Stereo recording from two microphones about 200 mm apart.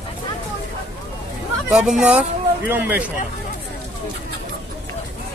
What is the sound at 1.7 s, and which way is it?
Speech, 5° right (ahead or behind).